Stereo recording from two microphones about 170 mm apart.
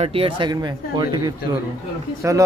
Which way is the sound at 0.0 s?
35° right (ahead or behind).